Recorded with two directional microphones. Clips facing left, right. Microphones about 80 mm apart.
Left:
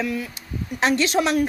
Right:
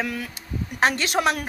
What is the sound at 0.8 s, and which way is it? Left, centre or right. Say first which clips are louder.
Speech: left 2 dB; right.